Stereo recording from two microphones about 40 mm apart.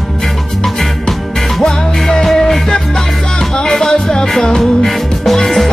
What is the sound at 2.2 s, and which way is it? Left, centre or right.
Music, centre.